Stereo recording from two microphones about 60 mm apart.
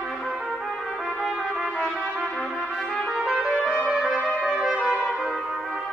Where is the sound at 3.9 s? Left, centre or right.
Centre.